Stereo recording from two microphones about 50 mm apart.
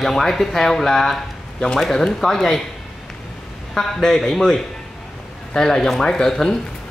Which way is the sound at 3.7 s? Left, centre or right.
Centre.